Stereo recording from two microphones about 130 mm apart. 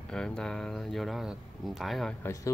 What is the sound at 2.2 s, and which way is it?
Speech, 25° left (ahead or behind).